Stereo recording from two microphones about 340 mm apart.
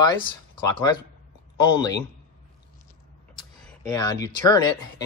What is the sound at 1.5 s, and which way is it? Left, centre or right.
Speech, centre.